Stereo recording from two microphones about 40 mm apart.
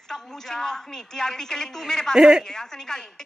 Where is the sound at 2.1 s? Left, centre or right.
Centre.